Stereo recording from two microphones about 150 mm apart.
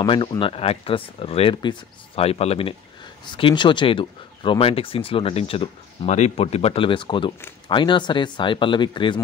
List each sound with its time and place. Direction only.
0.0 s speech: 30° left (ahead or behind)